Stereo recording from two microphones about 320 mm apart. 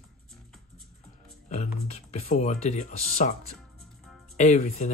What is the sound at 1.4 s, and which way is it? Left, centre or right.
Speech, left.